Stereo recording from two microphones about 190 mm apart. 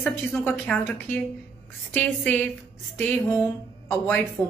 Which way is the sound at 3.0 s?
10° left (ahead or behind).